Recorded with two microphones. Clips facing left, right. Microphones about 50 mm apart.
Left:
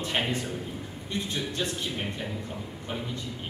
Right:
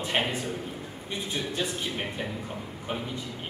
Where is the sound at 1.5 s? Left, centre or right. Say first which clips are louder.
Right 1 dB; centre.